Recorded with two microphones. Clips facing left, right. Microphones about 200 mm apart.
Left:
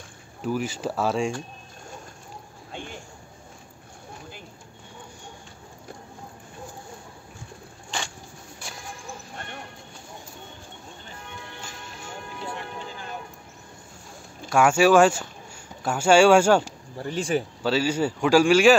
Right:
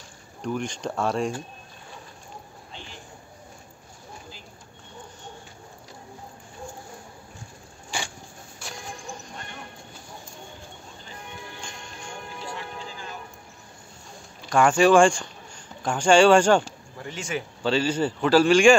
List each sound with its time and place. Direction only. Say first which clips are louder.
0.4 s speech: left 2 dB; 5° left (ahead or behind)
2.7 s a sound: left 7 dB; 55° left (ahead or behind)
11.6 s music: even; 5° left (ahead or behind)
14.5 s speech: even; 5° left (ahead or behind)
17.0 s speech: left 6 dB; 35° left (ahead or behind)
17.6 s speech: right 1 dB; 10° left (ahead or behind)